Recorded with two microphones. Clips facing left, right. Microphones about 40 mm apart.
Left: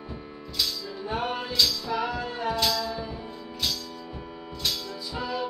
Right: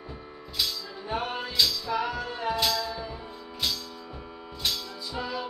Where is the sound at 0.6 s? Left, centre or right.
Centre.